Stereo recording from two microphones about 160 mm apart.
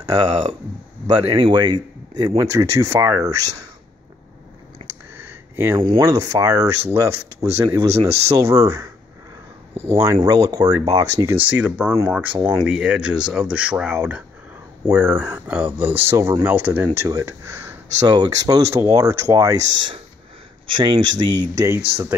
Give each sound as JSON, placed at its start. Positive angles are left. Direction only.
{"t": 1.0, "sound": "speech", "side_deg": -25}
{"t": 4.8, "sound": "a sound", "side_deg": -15}
{"t": 5.8, "sound": "speech", "side_deg": -35}
{"t": 6.0, "sound": "speech", "side_deg": -20}
{"t": 11.3, "sound": "speech", "side_deg": -10}